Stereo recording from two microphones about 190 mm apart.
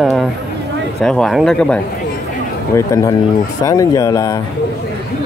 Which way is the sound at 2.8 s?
15° left (ahead or behind).